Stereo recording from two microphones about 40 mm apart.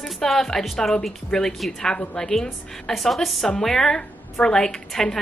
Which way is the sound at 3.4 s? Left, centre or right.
Centre.